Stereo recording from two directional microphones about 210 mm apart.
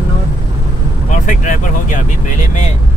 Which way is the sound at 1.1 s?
35° left (ahead or behind).